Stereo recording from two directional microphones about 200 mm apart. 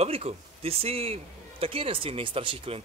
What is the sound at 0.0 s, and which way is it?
Speech, 30° right (ahead or behind).